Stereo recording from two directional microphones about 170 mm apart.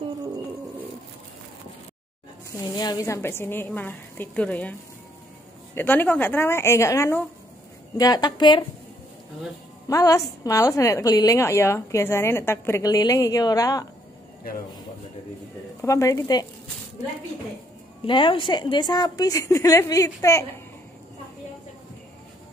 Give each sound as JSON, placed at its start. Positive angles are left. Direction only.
{"t": 2.5, "sound": "a woman's voice", "side_deg": 20}
{"t": 5.8, "sound": "a woman's voice", "side_deg": 10}
{"t": 9.8, "sound": "a woman's voice", "side_deg": 20}
{"t": 15.8, "sound": "a woman's voice", "side_deg": 20}
{"t": 18.0, "sound": "a woman's voice", "side_deg": 30}